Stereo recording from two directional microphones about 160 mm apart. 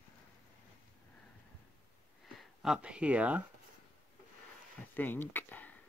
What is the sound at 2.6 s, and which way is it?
Speech, 5° right (ahead or behind).